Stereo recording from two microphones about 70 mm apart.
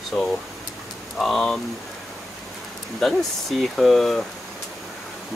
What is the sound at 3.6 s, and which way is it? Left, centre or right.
Speech, centre.